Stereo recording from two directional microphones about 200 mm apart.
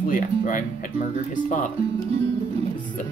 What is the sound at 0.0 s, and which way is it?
Speech, 40° left (ahead or behind).